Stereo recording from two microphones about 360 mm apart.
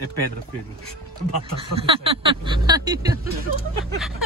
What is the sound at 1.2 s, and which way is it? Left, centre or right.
Speech, left.